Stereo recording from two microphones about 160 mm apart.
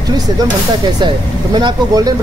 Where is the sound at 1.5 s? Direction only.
25° right (ahead or behind).